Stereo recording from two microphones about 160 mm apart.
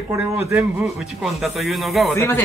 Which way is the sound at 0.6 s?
5° right (ahead or behind).